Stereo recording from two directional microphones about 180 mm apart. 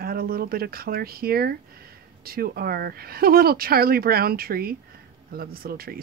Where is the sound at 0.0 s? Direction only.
55° right (ahead or behind).